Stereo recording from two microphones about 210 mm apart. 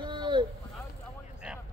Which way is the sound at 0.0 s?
20° right (ahead or behind).